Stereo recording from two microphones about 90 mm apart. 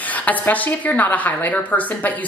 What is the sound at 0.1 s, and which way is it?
A woman's voice, 15° left (ahead or behind).